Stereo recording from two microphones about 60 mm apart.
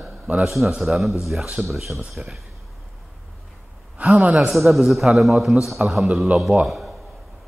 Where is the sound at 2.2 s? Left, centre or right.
Centre.